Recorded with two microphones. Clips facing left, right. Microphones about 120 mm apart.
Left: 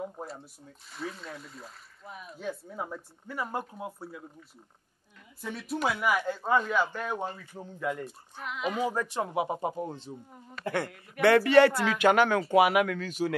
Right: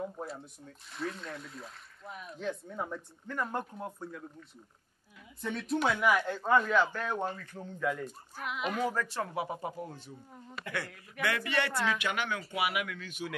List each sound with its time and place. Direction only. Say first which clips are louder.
0.0 s speech: even; centre (ahead or behind)
8.4 s speech: left 2 dB; 5° right (ahead or behind)
8.7 s speech: left 3 dB; 15° left (ahead or behind)
11.1 s speech: left 12 dB; 70° left (ahead or behind)
11.4 s speech: left 11 dB; 35° left (ahead or behind)